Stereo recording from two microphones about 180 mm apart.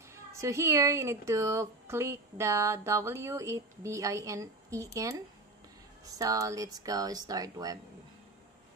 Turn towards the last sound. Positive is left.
turn(degrees=-20)  # may be behind; listen again after turning